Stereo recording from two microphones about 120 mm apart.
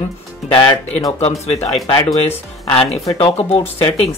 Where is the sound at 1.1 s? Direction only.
60° left (ahead or behind).